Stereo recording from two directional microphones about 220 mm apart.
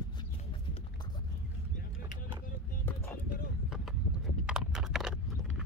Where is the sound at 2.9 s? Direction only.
10° left (ahead or behind).